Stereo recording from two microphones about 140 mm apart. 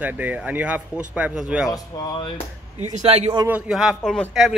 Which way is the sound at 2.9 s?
50° right (ahead or behind).